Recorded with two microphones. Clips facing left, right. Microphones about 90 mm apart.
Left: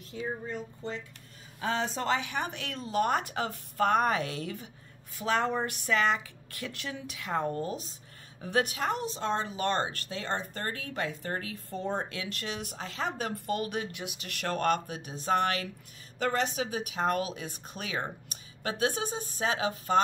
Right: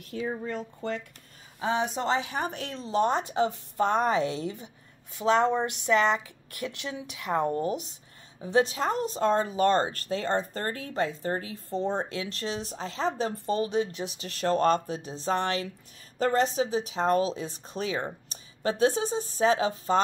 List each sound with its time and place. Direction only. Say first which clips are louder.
0.1 s speech: right 4 dB; 85° right
0.7 s speech: right 5 dB; 65° right (ahead or behind)
1.6 s speech: right 3 dB; 20° right (ahead or behind); by 20.0 s 35° right (ahead or behind)